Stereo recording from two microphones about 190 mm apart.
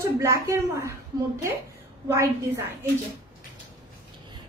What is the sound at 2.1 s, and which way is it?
Speech, 15° right (ahead or behind).